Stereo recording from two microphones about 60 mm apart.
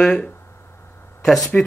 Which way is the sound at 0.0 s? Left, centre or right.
Centre.